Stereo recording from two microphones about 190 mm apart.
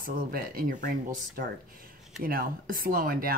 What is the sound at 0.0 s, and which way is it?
A woman's voice, 50° right (ahead or behind).